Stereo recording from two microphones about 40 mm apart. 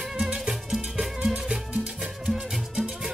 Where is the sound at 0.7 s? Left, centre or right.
Centre.